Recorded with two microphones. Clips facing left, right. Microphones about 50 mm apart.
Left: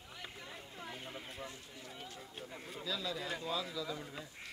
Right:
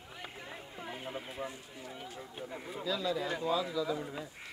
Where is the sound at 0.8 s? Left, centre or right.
Centre.